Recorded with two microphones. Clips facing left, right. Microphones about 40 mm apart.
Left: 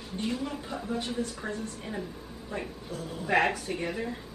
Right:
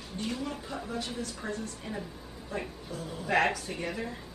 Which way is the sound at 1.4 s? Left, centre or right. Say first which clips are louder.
Left 1 dB; left.